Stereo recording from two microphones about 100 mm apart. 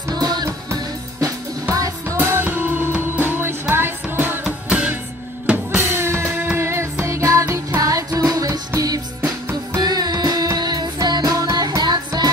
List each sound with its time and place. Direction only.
0.1 s music: 45° right (ahead or behind)
0.7 s music: 35° right (ahead or behind); by 4.9 s 10° right (ahead or behind)
5.8 s drum kit: 25° right (ahead or behind)
6.5 s music: 25° right (ahead or behind)
9.2 s music: 20° right (ahead or behind)
9.8 s music: 40° right (ahead or behind)